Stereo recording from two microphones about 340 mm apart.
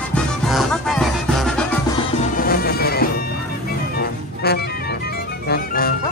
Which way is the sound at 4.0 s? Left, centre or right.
Left.